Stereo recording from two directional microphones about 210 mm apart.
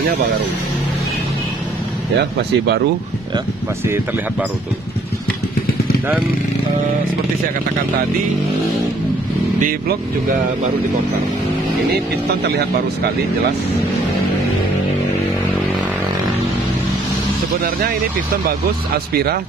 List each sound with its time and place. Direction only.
2.1 s speech: 55° right (ahead or behind)
3.8 s speech: 10° right (ahead or behind)
9.6 s speech: 40° right (ahead or behind)
12.4 s speech: 50° right (ahead or behind)
17.6 s speech: 45° right (ahead or behind)